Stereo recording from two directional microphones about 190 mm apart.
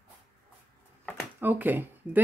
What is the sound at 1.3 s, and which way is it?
Speech, 10° right (ahead or behind).